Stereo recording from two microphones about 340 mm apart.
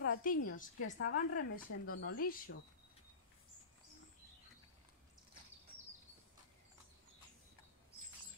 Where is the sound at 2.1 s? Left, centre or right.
Left.